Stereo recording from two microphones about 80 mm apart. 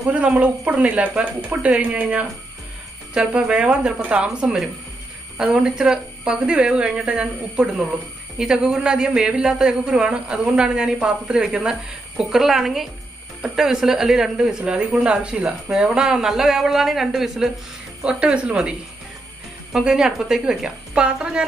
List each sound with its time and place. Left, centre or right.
0.1 s speech: centre